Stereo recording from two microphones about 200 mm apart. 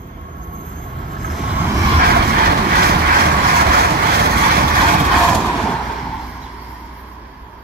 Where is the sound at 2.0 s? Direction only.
50° right (ahead or behind).